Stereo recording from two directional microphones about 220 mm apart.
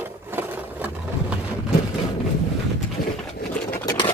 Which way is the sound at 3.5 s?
10° left (ahead or behind).